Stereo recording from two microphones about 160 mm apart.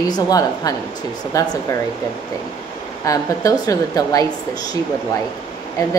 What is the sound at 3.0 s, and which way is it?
Speech, 20° left (ahead or behind).